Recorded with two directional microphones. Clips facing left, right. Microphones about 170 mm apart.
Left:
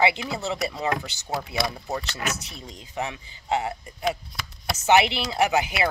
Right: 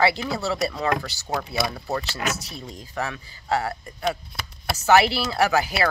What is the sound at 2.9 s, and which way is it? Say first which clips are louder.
Speech: right 1 dB; 20° left (ahead or behind).